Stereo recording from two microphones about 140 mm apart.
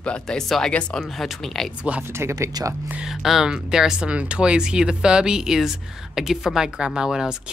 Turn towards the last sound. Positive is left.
turn(degrees=-5)  # may be behind; listen again after turning